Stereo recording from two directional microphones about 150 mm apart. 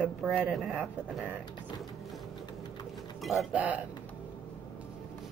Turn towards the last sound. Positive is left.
turn(degrees=-10)  # may be behind; listen again after turning